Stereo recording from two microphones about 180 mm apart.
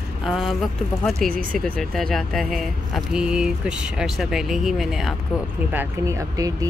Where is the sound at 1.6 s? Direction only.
5° left (ahead or behind).